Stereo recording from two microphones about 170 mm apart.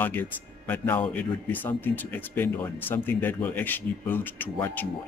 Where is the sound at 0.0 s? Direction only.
10° left (ahead or behind).